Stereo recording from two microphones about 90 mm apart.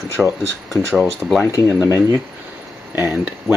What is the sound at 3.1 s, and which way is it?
Speech, 15° right (ahead or behind).